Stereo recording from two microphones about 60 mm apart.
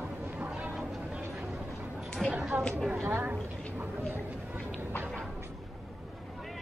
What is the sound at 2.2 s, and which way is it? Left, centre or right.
Chatter, centre.